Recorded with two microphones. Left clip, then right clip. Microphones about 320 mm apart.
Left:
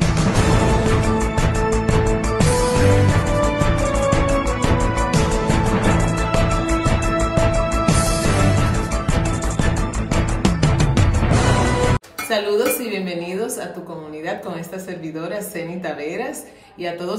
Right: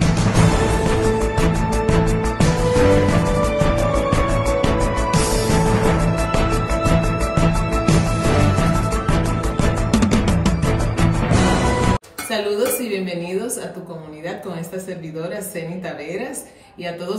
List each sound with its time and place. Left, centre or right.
0.0 s music: centre